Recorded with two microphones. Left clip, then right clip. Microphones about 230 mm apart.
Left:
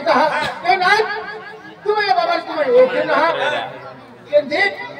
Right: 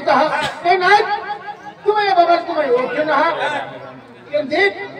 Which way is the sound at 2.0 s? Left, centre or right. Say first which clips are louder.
Right 3 dB; left.